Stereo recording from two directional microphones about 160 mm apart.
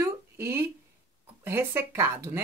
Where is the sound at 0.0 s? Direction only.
15° right (ahead or behind).